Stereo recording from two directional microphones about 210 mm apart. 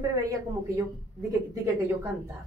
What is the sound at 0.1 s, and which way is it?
Speech, 15° right (ahead or behind).